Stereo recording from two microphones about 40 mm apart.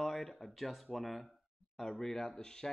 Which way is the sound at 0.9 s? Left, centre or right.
Centre.